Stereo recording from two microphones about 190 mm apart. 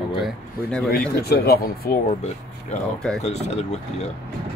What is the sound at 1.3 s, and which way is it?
Speech, 55° left (ahead or behind).